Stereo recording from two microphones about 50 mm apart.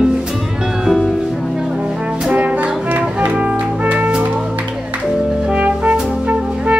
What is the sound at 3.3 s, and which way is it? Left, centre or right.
Music, right.